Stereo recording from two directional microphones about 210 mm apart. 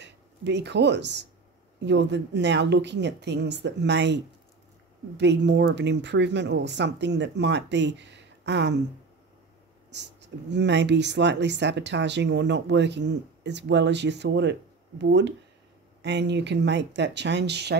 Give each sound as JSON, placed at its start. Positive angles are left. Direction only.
{"t": 0.0, "sound": "speech", "side_deg": -55}
{"t": 9.8, "sound": "speech", "side_deg": -55}